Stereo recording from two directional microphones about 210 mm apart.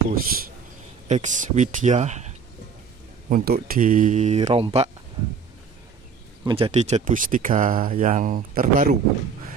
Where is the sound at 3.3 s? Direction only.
45° right (ahead or behind); by 4.9 s 30° right (ahead or behind).